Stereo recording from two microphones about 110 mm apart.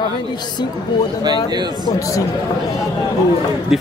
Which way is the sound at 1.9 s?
30° left (ahead or behind).